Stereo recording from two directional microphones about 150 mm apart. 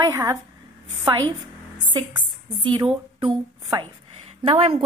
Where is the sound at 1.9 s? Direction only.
30° right (ahead or behind).